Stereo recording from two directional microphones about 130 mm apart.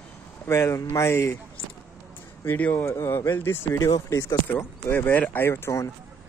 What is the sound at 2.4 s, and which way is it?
Speech, 15° left (ahead or behind).